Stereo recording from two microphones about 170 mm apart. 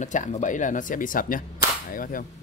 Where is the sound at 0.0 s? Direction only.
45° left (ahead or behind).